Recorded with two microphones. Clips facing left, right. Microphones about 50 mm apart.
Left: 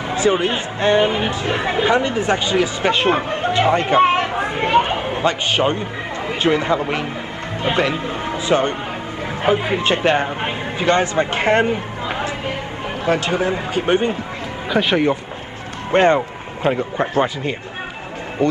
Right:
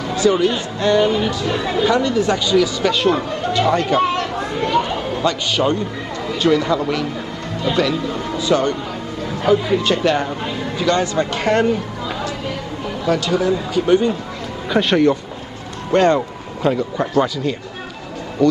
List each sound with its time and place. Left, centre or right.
0.1 s speech: left
14.7 s speech: centre
15.9 s speech: left